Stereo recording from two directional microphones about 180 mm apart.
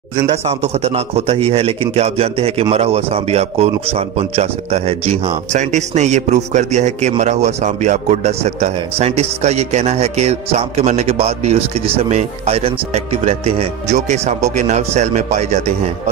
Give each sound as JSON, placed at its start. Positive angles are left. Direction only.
{"t": 0.5, "sound": "a man's voice", "side_deg": -35}